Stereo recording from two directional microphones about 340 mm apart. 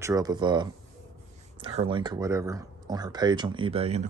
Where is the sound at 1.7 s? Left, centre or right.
Centre.